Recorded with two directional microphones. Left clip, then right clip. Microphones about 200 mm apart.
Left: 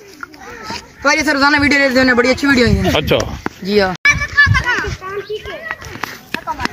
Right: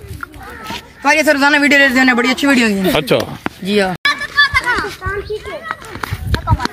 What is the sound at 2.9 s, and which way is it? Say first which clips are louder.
Speech: right 1 dB; 5° right (ahead or behind).